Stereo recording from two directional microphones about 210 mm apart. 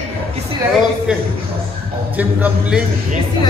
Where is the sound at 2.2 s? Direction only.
5° right (ahead or behind).